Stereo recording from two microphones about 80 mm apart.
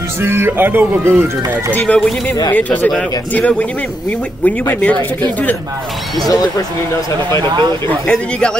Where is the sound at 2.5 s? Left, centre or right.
Centre.